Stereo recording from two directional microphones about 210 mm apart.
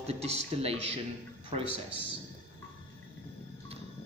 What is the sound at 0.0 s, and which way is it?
Speech, 30° right (ahead or behind).